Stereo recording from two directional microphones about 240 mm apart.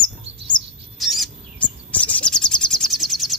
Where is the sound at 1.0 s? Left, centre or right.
Centre.